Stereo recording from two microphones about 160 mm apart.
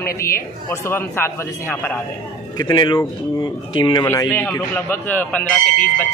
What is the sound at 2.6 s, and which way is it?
Speech, 25° left (ahead or behind).